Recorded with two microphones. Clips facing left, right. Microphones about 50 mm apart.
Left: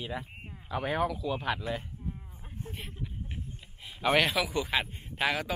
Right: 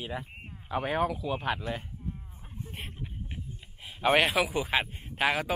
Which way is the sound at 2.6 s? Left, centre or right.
Left.